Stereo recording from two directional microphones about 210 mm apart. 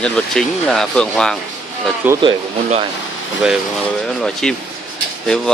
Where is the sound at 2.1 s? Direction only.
25° right (ahead or behind).